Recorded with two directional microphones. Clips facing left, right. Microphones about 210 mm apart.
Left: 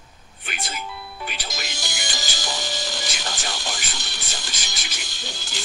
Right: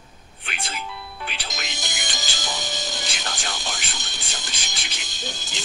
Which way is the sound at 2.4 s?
20° right (ahead or behind).